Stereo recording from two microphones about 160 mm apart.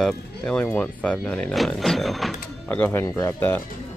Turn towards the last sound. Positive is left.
turn(degrees=10)  # may be behind; listen again after turning